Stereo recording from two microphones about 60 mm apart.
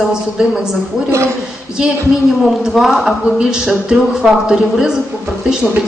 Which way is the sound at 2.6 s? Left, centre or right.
Centre.